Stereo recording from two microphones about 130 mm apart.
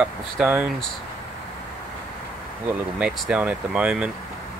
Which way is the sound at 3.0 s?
10° right (ahead or behind).